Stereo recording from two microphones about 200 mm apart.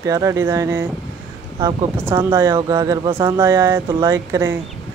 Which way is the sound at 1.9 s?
10° right (ahead or behind).